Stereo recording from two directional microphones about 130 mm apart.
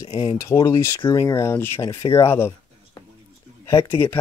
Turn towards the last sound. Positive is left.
turn(degrees=20)  # may be behind; listen again after turning